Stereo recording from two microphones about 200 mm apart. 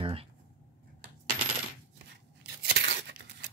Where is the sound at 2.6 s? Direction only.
60° right (ahead or behind).